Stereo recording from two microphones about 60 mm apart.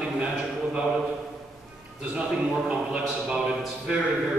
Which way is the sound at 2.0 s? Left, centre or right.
Right.